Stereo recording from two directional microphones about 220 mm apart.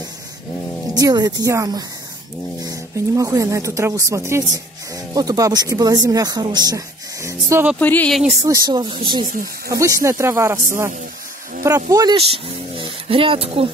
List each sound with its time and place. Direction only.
0.9 s speech: 15° right (ahead or behind)
7.8 s speech: 5° left (ahead or behind)
8.4 s speech: 15° right (ahead or behind)
9.2 s speech: 40° right (ahead or behind)
9.7 s speech: 15° right (ahead or behind)
11.9 s speech: 20° right (ahead or behind)
12.7 s a sound: 25° right (ahead or behind)